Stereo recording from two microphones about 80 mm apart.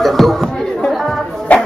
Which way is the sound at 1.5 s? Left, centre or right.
Centre.